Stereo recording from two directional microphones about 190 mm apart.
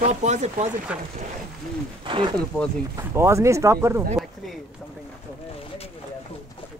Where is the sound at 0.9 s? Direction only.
5° right (ahead or behind).